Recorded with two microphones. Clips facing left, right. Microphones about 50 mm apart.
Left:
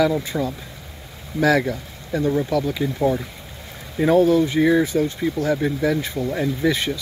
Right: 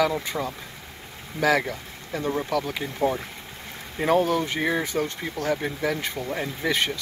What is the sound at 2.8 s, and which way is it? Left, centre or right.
Speech, right.